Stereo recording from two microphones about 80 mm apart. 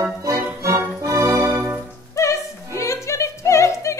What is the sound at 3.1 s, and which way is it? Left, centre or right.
Music, left.